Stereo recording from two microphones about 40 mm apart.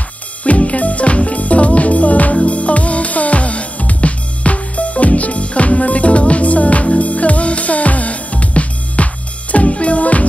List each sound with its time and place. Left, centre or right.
0.4 s music: left